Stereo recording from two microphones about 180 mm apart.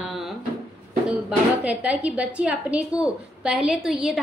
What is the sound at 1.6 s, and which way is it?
A woman's voice, 5° right (ahead or behind).